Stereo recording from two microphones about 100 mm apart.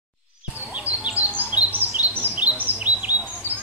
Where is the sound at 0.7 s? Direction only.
15° right (ahead or behind).